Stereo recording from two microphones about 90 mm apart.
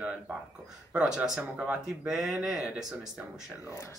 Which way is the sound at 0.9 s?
10° right (ahead or behind).